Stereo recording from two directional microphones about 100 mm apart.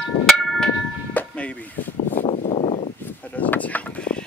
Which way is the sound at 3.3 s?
15° left (ahead or behind).